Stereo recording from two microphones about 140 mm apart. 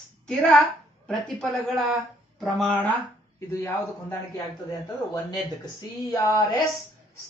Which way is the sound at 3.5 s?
15° left (ahead or behind).